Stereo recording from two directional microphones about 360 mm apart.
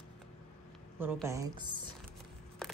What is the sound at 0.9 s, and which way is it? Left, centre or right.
Speech, centre.